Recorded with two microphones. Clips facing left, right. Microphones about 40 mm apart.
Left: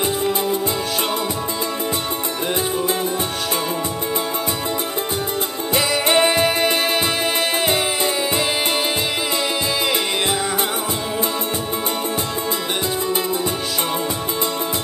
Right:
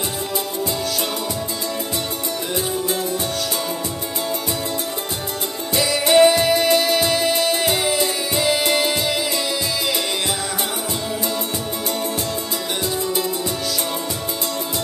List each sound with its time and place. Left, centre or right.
6.1 s music: left